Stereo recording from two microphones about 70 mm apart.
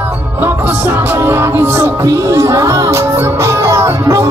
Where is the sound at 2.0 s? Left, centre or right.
Right.